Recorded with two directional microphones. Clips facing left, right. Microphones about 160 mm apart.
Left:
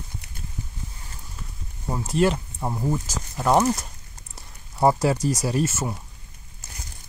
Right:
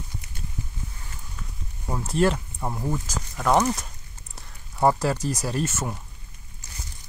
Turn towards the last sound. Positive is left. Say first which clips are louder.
# left 3 dB
turn(degrees=10)  # may be behind; listen again after turning